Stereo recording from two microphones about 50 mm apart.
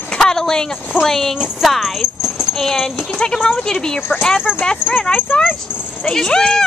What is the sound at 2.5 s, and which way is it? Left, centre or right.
Speech, centre.